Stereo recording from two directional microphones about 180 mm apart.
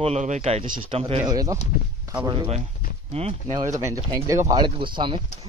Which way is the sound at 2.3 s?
35° right (ahead or behind).